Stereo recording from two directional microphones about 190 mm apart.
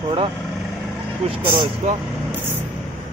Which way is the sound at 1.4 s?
25° right (ahead or behind).